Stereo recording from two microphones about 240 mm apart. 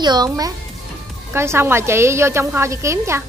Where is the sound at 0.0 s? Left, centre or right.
Centre.